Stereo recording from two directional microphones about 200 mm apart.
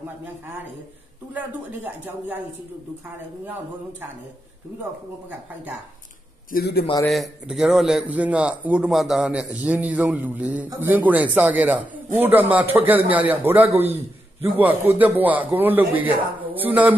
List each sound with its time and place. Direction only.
1.3 s a man's voice: 10° right (ahead or behind)
6.5 s a man's voice: 50° left (ahead or behind)
7.1 s a man's voice: centre (ahead or behind)